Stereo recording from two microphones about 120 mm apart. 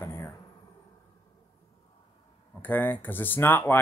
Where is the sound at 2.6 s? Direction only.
15° left (ahead or behind).